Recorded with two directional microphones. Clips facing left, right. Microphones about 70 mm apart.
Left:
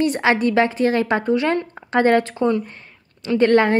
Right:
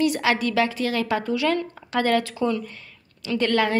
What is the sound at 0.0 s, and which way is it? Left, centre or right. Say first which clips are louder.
Speech: left 4 dB; left.